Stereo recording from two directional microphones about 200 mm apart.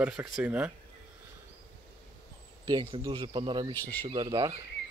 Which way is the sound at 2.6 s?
15° right (ahead or behind).